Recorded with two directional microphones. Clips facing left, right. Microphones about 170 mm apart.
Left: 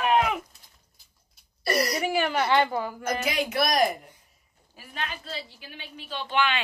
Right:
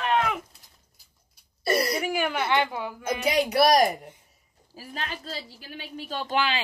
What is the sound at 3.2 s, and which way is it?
A woman's voice, 35° right (ahead or behind).